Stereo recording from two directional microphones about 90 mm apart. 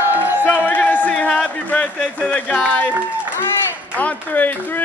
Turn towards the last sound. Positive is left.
turn(degrees=20)  # may be behind; listen again after turning